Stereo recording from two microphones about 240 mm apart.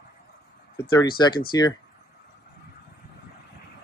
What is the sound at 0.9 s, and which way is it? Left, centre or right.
Speech, centre.